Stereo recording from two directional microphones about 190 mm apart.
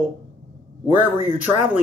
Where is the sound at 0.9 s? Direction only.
10° right (ahead or behind).